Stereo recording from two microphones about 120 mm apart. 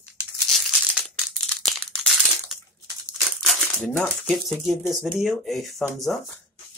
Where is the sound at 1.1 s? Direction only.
Centre (ahead or behind).